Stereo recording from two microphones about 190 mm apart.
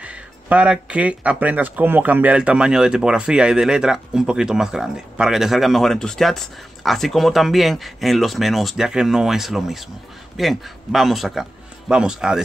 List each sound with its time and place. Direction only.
0.0 s speech: 5° right (ahead or behind)